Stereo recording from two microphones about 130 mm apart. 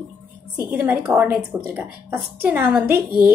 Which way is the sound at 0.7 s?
15° right (ahead or behind).